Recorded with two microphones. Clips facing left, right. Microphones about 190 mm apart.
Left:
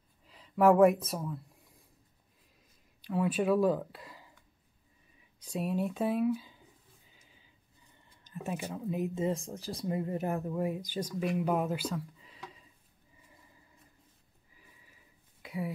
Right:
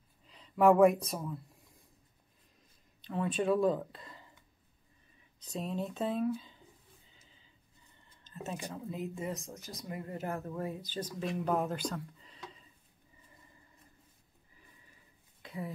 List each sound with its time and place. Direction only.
0.3 s speech: 5° left (ahead or behind)
3.0 s speech: 5° left (ahead or behind)
5.4 s speech: 10° left (ahead or behind)
8.2 s speech: 15° left (ahead or behind)
15.4 s a sound: 10° left (ahead or behind)